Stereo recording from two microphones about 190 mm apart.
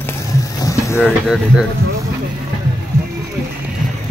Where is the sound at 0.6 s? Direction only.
15° left (ahead or behind).